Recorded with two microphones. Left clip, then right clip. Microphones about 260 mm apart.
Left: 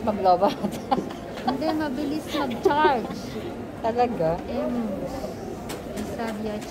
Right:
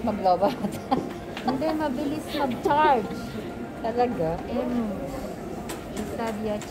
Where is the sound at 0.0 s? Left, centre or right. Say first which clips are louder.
Left 2 dB; centre.